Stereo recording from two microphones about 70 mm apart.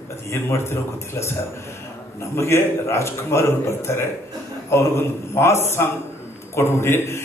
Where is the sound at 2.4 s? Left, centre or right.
Left.